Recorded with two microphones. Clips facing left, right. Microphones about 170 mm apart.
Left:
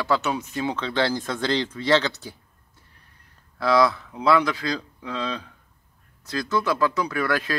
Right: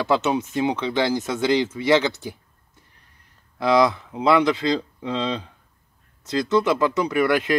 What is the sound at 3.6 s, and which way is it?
Speech, 20° right (ahead or behind).